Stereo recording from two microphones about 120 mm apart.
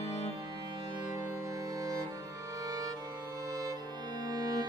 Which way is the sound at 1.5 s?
30° right (ahead or behind).